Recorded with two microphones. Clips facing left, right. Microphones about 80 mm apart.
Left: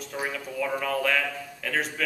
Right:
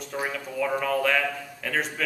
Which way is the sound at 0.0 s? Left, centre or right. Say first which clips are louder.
Right 1 dB; centre.